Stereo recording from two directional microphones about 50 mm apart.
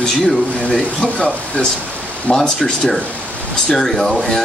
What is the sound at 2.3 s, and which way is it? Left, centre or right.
Speech, left.